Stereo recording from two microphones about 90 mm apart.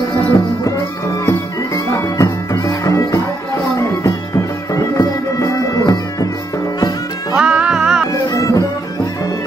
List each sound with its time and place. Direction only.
2.0 s music: 35° left (ahead or behind)
4.9 s music: 40° left (ahead or behind)
7.3 s music: 10° right (ahead or behind)
8.1 s music: 40° left (ahead or behind)